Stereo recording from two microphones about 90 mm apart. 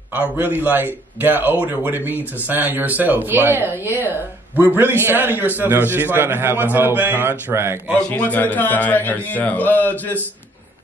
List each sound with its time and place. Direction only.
0.1 s a man's voice: 20° right (ahead or behind)
8.1 s a man's voice: 20° left (ahead or behind)